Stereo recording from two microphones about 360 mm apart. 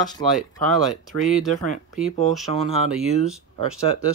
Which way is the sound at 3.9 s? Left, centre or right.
Centre.